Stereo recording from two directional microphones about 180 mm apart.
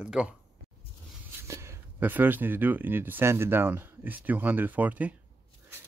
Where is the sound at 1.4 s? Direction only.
15° right (ahead or behind).